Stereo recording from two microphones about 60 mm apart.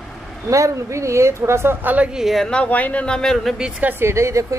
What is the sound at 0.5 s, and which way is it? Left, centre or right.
Speech, right.